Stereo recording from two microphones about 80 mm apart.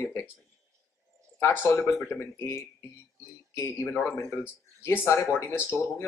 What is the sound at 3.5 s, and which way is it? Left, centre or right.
Speech, left.